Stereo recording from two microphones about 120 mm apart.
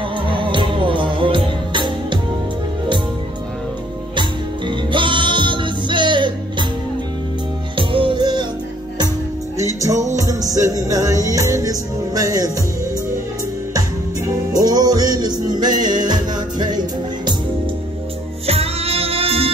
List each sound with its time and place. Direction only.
0.2 s music: 45° right (ahead or behind)
4.1 s music: 40° right (ahead or behind)
7.7 s music: 45° right (ahead or behind)
10.1 s music: 30° right (ahead or behind)
14.5 s music: 35° right (ahead or behind)
18.5 s music: 55° right (ahead or behind)